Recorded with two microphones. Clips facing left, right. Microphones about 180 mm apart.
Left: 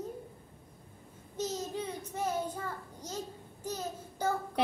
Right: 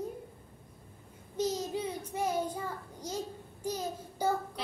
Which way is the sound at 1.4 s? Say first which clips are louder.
Right 3 dB; 10° right (ahead or behind).